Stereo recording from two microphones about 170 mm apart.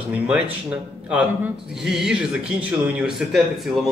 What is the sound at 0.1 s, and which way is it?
Speech, 10° right (ahead or behind).